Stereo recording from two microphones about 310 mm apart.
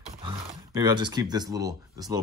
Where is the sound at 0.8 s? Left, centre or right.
Centre.